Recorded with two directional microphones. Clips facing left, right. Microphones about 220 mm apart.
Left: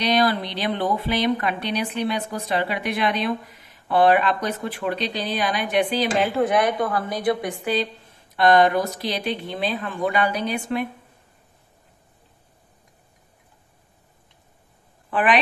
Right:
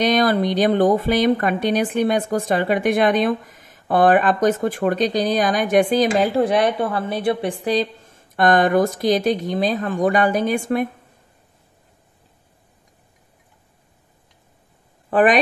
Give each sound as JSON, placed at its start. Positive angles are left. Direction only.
{"t": 0.0, "sound": "speech", "side_deg": -50}
{"t": 15.0, "sound": "speech", "side_deg": -45}